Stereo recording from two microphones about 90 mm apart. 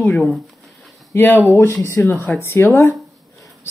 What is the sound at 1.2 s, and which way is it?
Speech, 20° left (ahead or behind).